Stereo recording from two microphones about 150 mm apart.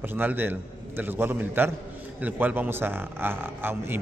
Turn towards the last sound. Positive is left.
turn(degrees=-15)  # may be behind; listen again after turning